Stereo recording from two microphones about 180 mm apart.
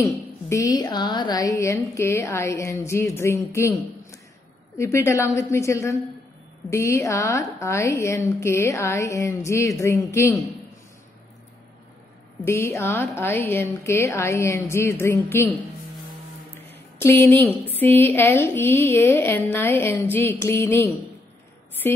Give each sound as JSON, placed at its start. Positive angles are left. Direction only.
{"t": 0.0, "sound": "a woman's voice", "side_deg": 15}
{"t": 12.4, "sound": "a woman's voice", "side_deg": 15}
{"t": 16.7, "sound": "a woman's voice", "side_deg": 10}